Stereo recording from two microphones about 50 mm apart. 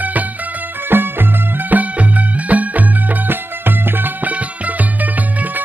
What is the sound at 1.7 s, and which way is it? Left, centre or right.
Music, right.